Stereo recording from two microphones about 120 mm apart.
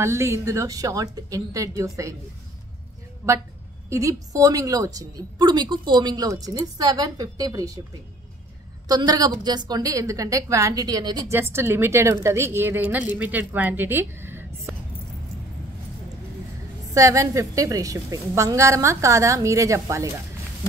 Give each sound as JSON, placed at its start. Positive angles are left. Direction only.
{"t": 0.0, "sound": "a woman's voice", "side_deg": -25}
{"t": 3.9, "sound": "a woman's voice", "side_deg": -25}
{"t": 8.8, "sound": "a woman's voice", "side_deg": -30}
{"t": 11.3, "sound": "a woman's voice", "side_deg": -20}
{"t": 16.9, "sound": "a woman's voice", "side_deg": -25}